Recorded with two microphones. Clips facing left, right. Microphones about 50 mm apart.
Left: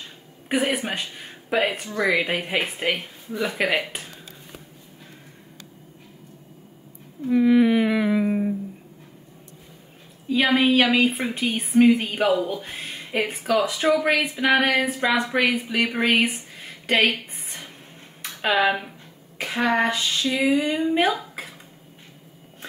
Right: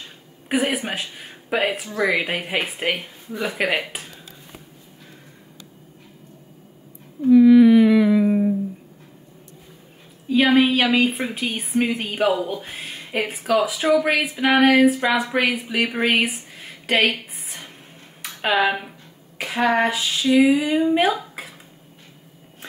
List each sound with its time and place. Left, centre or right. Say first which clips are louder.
0.5 s a woman's voice: right 1 dB; centre
7.2 s a sound: right 6 dB; left
10.2 s a woman's voice: right 3 dB; centre